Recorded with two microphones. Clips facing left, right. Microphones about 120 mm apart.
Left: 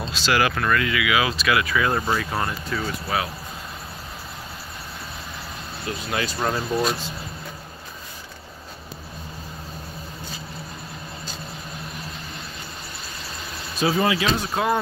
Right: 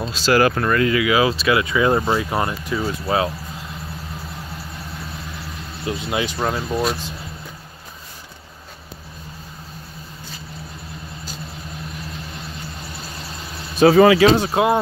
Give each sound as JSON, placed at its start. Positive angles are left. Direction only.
{"t": 0.1, "sound": "speech", "side_deg": -35}
{"t": 2.8, "sound": "speech", "side_deg": -30}
{"t": 5.9, "sound": "speech", "side_deg": -20}
{"t": 13.7, "sound": "speech", "side_deg": -65}
{"t": 14.2, "sound": "speech", "side_deg": -25}